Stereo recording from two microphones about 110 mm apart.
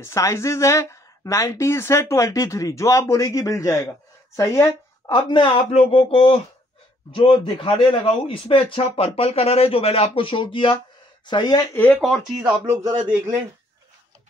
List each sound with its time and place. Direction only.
0.0 s speech: 25° left (ahead or behind)
5.0 s speech: 45° left (ahead or behind); by 6.4 s 60° left (ahead or behind)
7.1 s a man's voice: 45° left (ahead or behind)
11.7 s speech: 15° left (ahead or behind)
12.0 s speech: centre (ahead or behind)